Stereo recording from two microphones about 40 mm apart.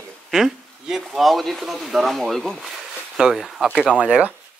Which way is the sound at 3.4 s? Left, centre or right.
Centre.